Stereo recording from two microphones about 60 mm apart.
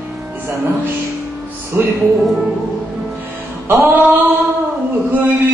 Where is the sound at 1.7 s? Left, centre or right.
Right.